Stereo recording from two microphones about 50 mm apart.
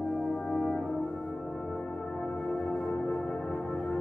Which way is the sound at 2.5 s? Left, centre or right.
Left.